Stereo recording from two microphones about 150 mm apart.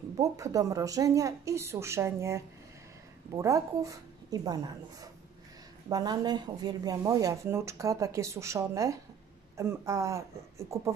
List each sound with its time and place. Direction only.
0.2 s speech: 25° right (ahead or behind)